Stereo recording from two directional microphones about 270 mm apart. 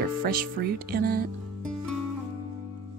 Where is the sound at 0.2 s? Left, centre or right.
Right.